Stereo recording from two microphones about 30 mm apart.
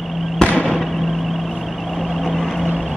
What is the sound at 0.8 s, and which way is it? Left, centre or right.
Vehicle, centre.